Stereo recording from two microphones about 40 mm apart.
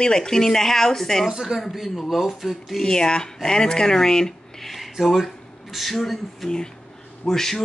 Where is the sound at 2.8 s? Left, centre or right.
Centre.